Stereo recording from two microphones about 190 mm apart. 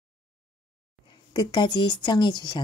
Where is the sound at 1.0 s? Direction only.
20° left (ahead or behind).